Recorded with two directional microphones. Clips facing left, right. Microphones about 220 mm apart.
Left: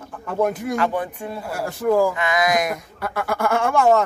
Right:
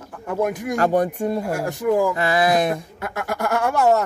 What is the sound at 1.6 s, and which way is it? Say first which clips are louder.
Speech: left 3 dB; 15° right (ahead or behind).